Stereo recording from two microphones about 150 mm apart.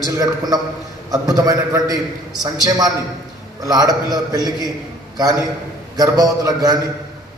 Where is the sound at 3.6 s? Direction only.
25° right (ahead or behind).